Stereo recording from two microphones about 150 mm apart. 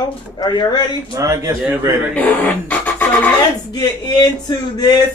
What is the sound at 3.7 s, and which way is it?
Speech, 25° left (ahead or behind).